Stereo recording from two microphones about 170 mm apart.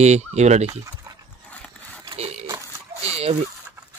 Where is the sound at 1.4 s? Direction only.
10° left (ahead or behind).